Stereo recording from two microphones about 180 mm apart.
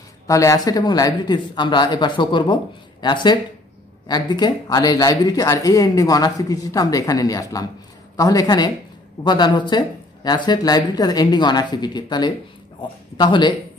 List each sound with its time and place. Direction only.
0.3 s speech: 20° left (ahead or behind)